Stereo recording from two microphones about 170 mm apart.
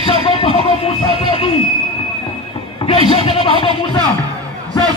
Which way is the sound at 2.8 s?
35° left (ahead or behind).